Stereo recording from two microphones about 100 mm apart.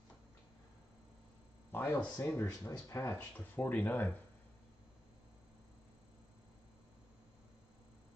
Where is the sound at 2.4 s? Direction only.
25° left (ahead or behind).